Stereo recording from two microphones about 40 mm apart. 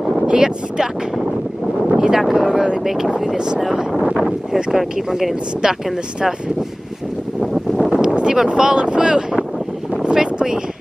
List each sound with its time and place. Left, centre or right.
0.3 s speech: centre
2.0 s speech: centre
2.8 s speech: centre
3.3 s speech: centre
4.7 s speech: centre
7.9 s speech: right
10.1 s a sound: centre